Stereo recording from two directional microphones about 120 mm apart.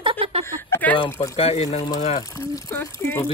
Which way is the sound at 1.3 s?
60° left (ahead or behind).